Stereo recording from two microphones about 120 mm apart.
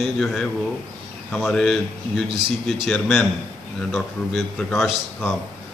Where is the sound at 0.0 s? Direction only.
5° left (ahead or behind).